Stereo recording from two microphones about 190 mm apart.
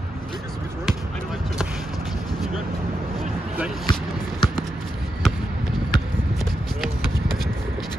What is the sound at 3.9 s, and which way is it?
Basketball bounce, 20° left (ahead or behind).